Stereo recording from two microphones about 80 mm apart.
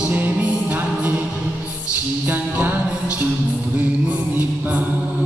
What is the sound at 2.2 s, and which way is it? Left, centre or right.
Music, right.